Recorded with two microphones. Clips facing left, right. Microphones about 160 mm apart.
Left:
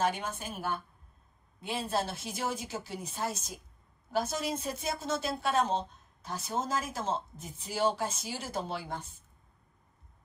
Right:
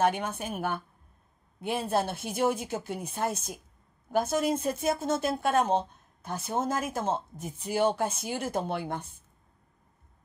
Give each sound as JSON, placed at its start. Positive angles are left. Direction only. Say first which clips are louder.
{"t": 0.0, "sound": "a woman's voice", "louder": "right 5 dB", "side_deg": -60}